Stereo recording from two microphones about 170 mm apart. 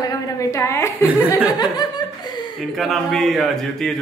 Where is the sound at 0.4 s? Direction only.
15° left (ahead or behind).